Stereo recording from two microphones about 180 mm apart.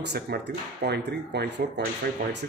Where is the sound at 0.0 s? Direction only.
70° right (ahead or behind).